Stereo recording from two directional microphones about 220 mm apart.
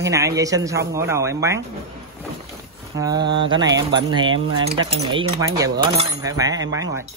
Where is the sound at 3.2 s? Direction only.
55° right (ahead or behind).